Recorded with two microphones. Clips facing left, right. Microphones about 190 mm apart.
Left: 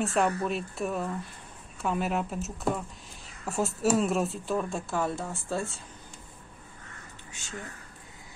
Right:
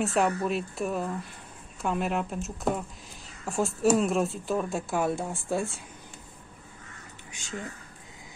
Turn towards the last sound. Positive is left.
turn(degrees=-15)  # may be behind; listen again after turning